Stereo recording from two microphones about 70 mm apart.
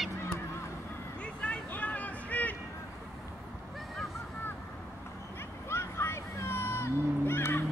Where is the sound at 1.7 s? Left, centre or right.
Left.